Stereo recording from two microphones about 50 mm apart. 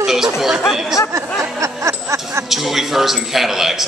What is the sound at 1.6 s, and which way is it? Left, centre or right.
Music, right.